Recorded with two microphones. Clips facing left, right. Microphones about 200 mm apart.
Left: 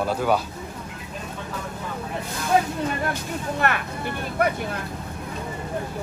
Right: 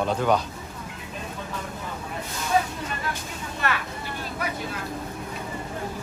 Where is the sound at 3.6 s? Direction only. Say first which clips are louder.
Left 2 dB; 55° left (ahead or behind).